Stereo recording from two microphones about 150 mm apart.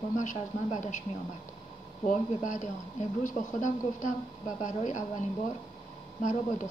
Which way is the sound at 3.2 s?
55° left (ahead or behind).